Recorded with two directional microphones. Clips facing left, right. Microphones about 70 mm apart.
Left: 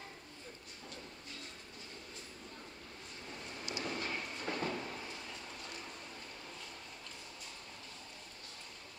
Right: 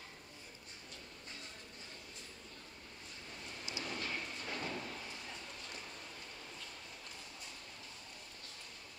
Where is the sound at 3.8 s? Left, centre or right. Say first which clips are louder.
Left 2 dB; centre.